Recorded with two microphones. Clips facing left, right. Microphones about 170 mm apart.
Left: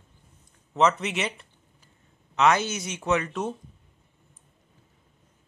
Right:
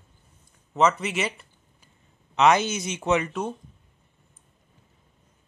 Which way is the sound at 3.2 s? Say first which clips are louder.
Even; centre (ahead or behind).